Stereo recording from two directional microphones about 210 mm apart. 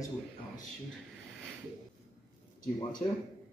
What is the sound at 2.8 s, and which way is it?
Speech, 20° left (ahead or behind).